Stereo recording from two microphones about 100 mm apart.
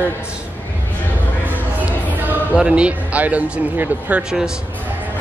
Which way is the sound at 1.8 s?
15° right (ahead or behind).